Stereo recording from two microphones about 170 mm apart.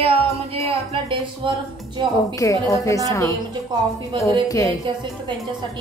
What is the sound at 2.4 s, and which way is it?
Speech, 20° left (ahead or behind).